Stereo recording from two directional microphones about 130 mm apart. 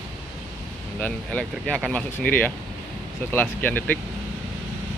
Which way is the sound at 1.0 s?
10° left (ahead or behind).